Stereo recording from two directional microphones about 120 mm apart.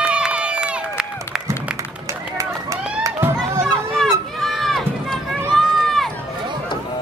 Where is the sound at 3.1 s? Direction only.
20° right (ahead or behind).